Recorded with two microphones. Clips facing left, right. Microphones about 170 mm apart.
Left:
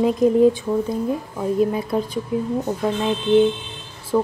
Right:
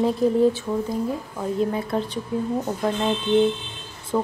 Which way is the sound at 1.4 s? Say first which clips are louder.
Left 4 dB; 20° left (ahead or behind).